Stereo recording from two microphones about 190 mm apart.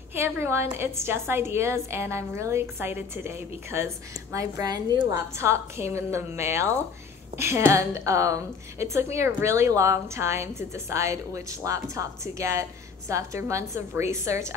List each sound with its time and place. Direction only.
0.1 s a woman's voice: 15° right (ahead or behind)